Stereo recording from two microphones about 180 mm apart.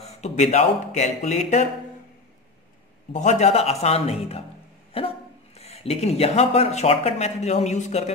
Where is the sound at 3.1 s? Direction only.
40° left (ahead or behind).